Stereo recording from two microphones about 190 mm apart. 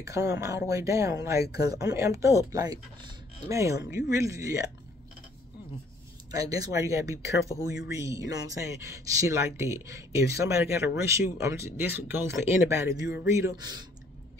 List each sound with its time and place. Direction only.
0.0 s speech: 15° right (ahead or behind)
6.3 s speech: 20° right (ahead or behind)